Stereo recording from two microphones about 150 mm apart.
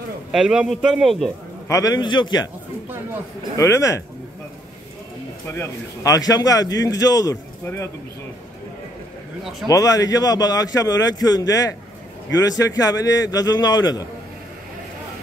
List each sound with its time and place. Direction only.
0.3 s a man's voice: 5° right (ahead or behind)
1.7 s a man's voice: 25° left (ahead or behind)
3.5 s a man's voice: 20° left (ahead or behind)
5.6 s a man's voice: 20° left (ahead or behind)
9.4 s a man's voice: centre (ahead or behind)
9.7 s a man's voice: 25° left (ahead or behind)